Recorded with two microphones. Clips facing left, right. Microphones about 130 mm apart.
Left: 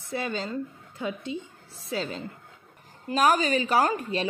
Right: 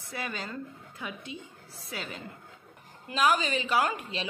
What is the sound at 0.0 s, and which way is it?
A woman's voice, 25° left (ahead or behind).